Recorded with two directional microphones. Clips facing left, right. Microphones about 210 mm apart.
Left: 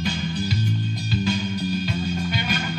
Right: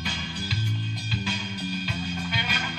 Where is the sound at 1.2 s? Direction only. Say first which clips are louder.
Left 9 dB; 40° left (ahead or behind).